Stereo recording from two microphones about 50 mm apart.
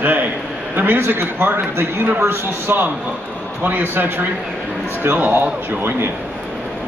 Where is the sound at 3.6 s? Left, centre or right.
Right.